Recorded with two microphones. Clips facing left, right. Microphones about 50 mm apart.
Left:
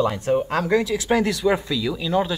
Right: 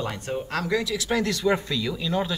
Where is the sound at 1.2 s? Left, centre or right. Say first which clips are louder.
Left 3 dB; centre.